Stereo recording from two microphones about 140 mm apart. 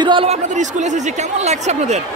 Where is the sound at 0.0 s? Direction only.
35° right (ahead or behind).